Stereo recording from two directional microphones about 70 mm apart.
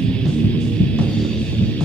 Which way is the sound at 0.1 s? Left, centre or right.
Centre.